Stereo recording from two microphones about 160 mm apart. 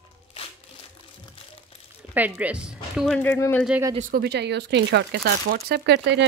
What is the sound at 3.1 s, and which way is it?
Speech, 10° left (ahead or behind).